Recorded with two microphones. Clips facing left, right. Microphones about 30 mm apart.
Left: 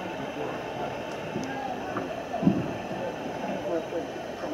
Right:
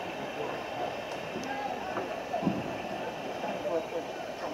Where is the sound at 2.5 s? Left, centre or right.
Centre.